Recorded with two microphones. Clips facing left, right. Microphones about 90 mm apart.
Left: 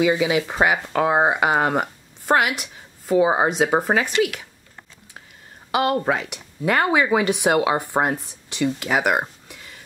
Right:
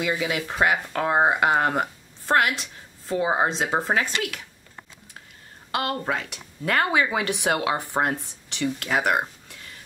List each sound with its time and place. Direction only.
0.1 s speech: 20° left (ahead or behind)
5.7 s speech: 10° left (ahead or behind)